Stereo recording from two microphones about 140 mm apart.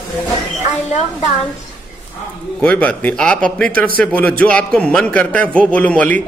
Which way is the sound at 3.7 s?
90° right.